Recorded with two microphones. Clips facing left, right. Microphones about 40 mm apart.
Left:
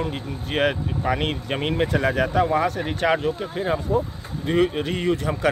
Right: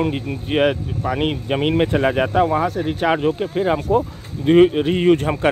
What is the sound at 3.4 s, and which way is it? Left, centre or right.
Speech, right.